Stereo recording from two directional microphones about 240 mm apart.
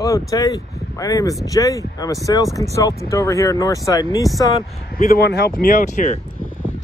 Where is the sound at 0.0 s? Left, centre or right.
Centre.